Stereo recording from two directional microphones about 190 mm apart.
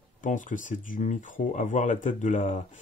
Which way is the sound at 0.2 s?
45° left (ahead or behind).